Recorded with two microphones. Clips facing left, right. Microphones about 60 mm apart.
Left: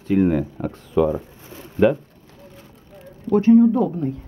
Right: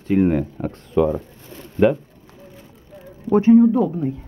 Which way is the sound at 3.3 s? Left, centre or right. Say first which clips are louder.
Right 1 dB; right.